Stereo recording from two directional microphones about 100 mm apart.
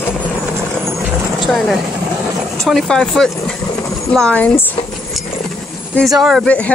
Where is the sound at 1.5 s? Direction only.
Centre (ahead or behind).